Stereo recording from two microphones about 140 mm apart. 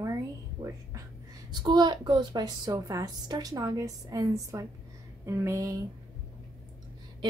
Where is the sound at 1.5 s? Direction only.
30° right (ahead or behind).